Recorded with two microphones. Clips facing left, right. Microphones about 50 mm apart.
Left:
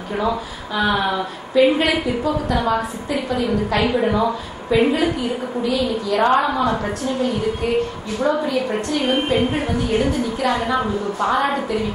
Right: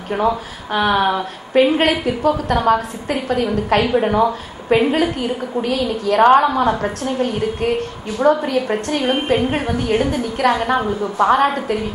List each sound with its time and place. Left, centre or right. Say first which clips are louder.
0.7 s a woman's voice: right 3 dB; right